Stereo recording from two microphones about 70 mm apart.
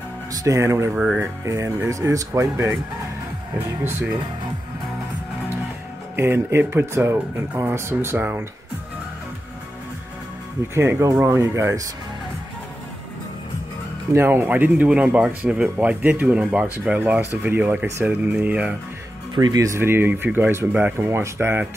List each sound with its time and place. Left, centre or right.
0.3 s music: right
0.6 s speech: right
0.9 s speech: centre
1.4 s speech: right
2.5 s speech: right
6.1 s speech: right
8.2 s speech: right
10.7 s speech: right
14.1 s speech: right
19.3 s speech: right
19.8 s speech: right